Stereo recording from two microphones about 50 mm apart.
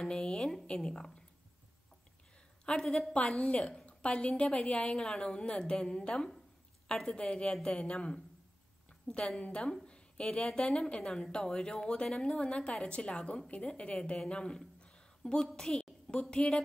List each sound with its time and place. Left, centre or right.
0.0 s a sound: centre
0.7 s a woman's voice: centre
2.6 s a woman's voice: centre